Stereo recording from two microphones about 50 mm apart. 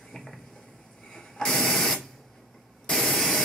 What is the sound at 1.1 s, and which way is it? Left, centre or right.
Printer, centre.